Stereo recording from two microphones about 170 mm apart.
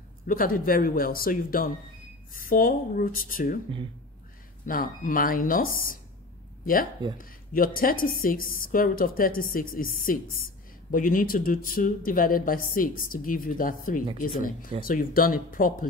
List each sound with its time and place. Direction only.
0.3 s speech: 55° left (ahead or behind)
4.6 s speech: 55° left (ahead or behind)